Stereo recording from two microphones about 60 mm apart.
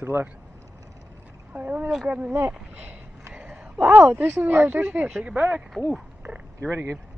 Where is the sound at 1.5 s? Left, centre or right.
Right.